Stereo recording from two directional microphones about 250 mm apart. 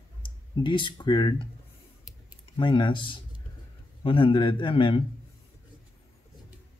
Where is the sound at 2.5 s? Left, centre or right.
Centre.